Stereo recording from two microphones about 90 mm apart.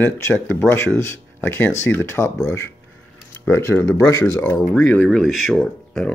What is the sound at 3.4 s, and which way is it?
Speech, 30° left (ahead or behind).